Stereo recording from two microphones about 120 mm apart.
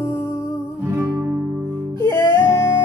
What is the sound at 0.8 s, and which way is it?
Music, 20° right (ahead or behind).